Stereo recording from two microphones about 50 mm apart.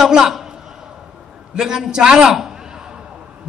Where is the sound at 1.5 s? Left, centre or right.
Centre.